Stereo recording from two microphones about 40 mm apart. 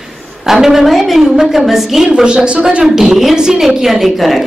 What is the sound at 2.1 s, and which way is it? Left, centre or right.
Speech, right.